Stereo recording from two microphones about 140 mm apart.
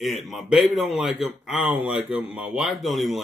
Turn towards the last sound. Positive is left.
turn(degrees=0)  # may be behind; listen again after turning